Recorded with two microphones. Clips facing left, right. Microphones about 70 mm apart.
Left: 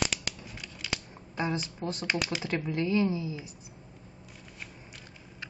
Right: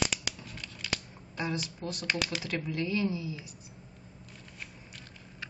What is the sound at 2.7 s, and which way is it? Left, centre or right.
Speech, left.